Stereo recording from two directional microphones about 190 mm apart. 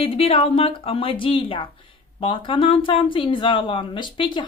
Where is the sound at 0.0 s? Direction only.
30° left (ahead or behind).